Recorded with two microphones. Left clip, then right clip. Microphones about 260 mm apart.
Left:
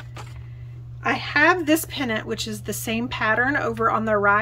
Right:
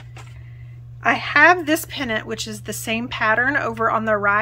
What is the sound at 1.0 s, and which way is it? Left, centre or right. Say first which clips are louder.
A woman's voice: right 5 dB; centre.